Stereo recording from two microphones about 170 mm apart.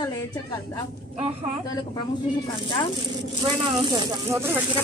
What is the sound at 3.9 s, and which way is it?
Speech, 20° right (ahead or behind).